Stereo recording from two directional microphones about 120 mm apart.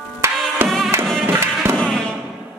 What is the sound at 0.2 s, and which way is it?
Music, 25° right (ahead or behind).